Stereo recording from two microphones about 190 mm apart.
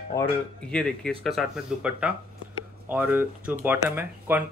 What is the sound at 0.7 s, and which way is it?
Speech, 5° left (ahead or behind).